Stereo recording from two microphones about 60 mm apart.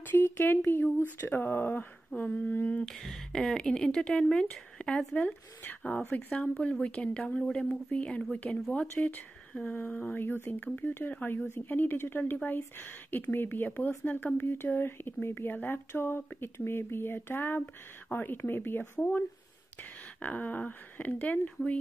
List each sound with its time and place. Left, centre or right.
0.0 s a sound: left
0.7 s speech: left
2.0 s speech: left
2.9 s speech: centre; by 9.2 s left
9.5 s a sound: centre
9.8 s speech: left
18.9 s speech: left